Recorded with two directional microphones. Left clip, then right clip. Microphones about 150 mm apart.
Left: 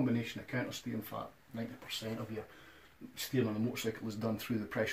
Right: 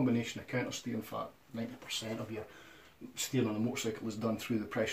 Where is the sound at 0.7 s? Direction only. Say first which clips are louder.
Right 2 dB; 15° left (ahead or behind).